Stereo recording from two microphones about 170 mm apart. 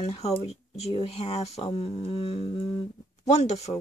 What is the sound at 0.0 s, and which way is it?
Speech, 40° left (ahead or behind).